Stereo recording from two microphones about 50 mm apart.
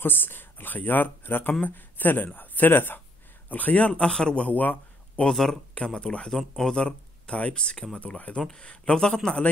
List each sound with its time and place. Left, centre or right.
0.0 s speech: left
3.4 s speech: left
4.6 s a sound: left
5.3 s speech: centre
5.9 s speech: centre
6.3 s speech: centre
6.8 s speech: centre